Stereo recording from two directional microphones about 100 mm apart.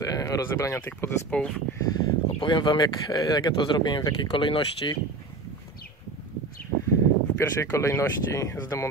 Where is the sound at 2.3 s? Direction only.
50° left (ahead or behind).